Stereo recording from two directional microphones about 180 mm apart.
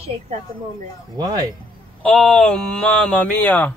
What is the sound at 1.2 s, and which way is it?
Speech, 20° right (ahead or behind).